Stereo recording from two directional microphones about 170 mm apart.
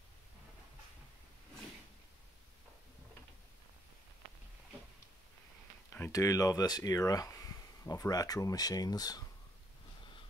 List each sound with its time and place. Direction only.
5.9 s speech: 15° left (ahead or behind)